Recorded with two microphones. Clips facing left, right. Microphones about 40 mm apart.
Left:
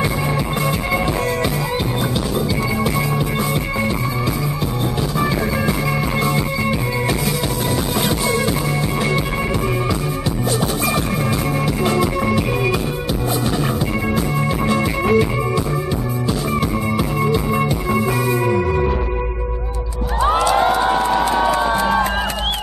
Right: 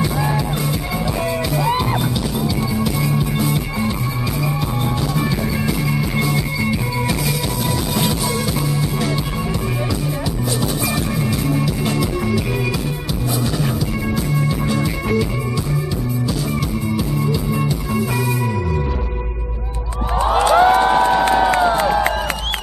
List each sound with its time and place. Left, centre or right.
5.7 s music: left
11.4 s music: left
14.7 s music: left
16.9 s music: left
20.3 s music: right
21.3 s crowd: right